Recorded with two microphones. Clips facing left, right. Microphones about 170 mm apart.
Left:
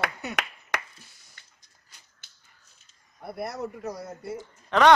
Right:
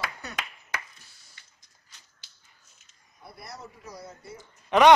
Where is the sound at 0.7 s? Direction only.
70° left (ahead or behind).